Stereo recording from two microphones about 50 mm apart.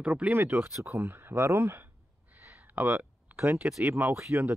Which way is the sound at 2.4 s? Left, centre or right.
Right.